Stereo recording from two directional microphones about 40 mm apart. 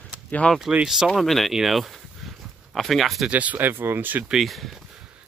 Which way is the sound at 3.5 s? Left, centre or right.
Right.